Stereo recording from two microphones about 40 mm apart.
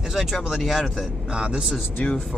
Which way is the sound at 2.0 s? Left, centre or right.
Left.